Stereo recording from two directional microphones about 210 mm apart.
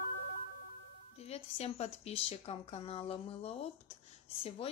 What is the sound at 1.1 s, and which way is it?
Speech, 30° left (ahead or behind).